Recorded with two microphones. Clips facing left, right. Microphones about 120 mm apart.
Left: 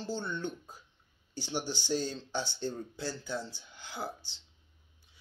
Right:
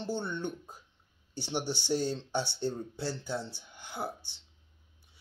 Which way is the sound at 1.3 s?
60° right (ahead or behind).